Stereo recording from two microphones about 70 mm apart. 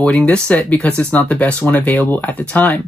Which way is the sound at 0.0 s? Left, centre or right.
Centre.